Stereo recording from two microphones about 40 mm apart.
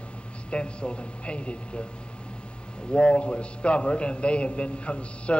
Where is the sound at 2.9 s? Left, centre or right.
Left.